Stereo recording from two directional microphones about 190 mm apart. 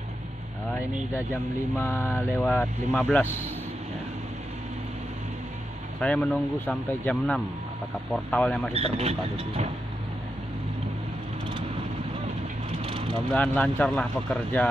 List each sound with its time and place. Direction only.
1.1 s speech: 15° left (ahead or behind)
5.9 s speech: 5° left (ahead or behind)
8.7 s speech: 30° right (ahead or behind)
12.8 s vehicle: 25° right (ahead or behind)
13.3 s speech: 10° left (ahead or behind)